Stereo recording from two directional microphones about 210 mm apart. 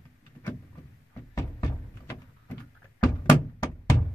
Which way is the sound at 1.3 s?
15° left (ahead or behind).